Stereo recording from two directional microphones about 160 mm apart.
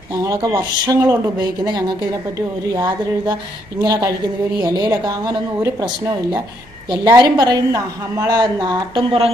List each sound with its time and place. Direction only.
0.1 s a woman's voice: 20° right (ahead or behind)
2.7 s a woman's voice: 25° right (ahead or behind)